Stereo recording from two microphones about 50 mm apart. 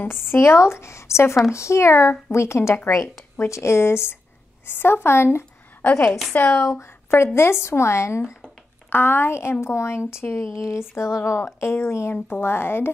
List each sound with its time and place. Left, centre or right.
0.0 s a woman's voice: left
6.3 s speech: left
6.6 s speech: left
8.9 s speech: left
10.3 s speech: left